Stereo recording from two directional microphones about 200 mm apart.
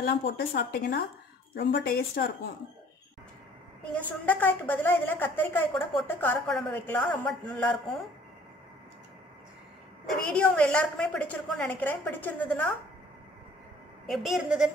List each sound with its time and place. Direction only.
0.0 s a woman's voice: 50° left (ahead or behind)
3.9 s a woman's voice: 10° left (ahead or behind)
10.2 s a woman's voice: 5° left (ahead or behind)
14.0 s a woman's voice: centre (ahead or behind)